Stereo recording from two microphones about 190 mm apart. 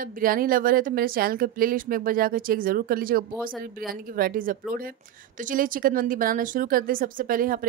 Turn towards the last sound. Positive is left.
turn(degrees=-45)  # may be behind; listen again after turning